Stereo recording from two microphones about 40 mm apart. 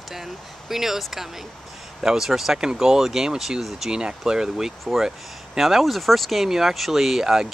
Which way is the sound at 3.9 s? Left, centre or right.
Right.